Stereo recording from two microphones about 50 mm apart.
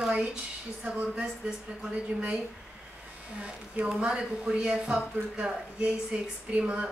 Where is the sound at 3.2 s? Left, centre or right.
Right.